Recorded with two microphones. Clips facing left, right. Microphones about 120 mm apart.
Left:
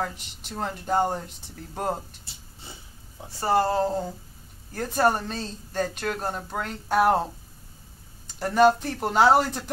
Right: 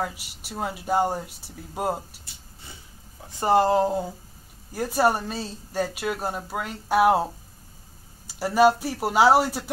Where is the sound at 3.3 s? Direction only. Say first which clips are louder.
Right 3 dB; 20° right (ahead or behind).